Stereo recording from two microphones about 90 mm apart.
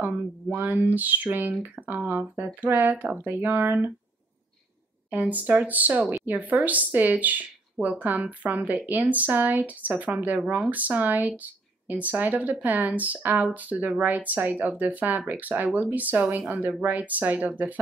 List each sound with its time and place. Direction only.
0.0 s speech: 20° right (ahead or behind)
5.1 s speech: 15° right (ahead or behind)